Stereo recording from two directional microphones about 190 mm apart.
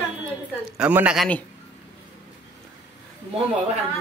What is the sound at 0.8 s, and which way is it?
Speech, 5° right (ahead or behind).